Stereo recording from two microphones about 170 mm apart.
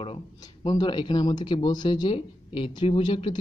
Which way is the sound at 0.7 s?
25° left (ahead or behind).